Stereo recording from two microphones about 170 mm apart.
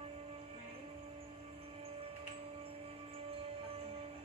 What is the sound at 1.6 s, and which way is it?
Music, 35° right (ahead or behind).